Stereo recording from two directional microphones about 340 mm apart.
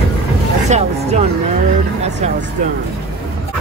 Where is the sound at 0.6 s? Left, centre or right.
Centre.